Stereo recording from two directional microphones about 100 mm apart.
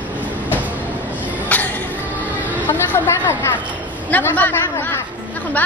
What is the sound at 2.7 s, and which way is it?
A child's voice, 25° left (ahead or behind).